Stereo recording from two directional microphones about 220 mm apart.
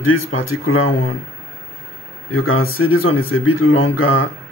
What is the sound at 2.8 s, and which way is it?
Speech, 80° left.